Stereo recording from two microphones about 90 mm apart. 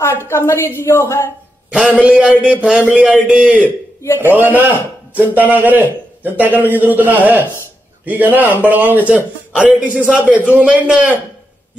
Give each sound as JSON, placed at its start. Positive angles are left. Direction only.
{"t": 0.0, "sound": "a woman's voice", "side_deg": 30}
{"t": 1.7, "sound": "a man's voice", "side_deg": -15}